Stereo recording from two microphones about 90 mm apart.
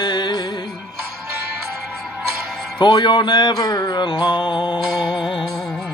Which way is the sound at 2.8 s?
55° left (ahead or behind).